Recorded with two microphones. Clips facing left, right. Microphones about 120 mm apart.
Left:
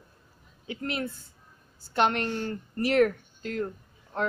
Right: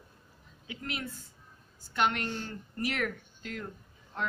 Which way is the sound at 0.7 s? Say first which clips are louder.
Left 7 dB; 35° left (ahead or behind).